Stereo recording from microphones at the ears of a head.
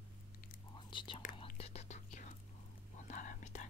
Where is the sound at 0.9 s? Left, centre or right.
Left.